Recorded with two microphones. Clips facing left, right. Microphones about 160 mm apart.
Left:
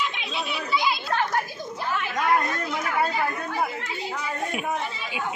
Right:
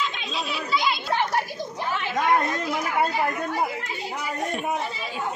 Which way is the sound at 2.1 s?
20° right (ahead or behind).